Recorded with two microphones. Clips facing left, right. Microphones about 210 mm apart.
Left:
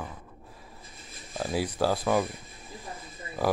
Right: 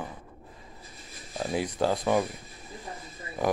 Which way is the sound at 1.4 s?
5° left (ahead or behind).